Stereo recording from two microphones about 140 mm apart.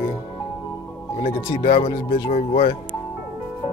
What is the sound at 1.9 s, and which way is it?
Speech, 90° left.